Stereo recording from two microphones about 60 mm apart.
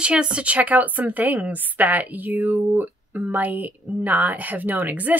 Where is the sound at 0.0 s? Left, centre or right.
Centre.